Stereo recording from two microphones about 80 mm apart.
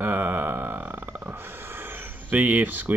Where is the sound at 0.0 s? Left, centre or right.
Right.